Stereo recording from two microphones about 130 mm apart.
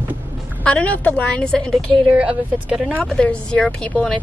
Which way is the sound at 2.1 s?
10° right (ahead or behind).